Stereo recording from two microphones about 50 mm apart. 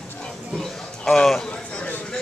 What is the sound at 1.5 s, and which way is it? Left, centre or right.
Speech, left.